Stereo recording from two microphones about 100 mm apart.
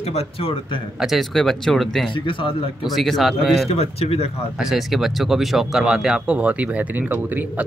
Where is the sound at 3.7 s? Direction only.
85° left.